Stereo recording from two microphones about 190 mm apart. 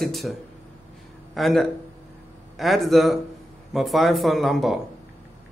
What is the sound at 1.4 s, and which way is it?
A man's voice, centre (ahead or behind).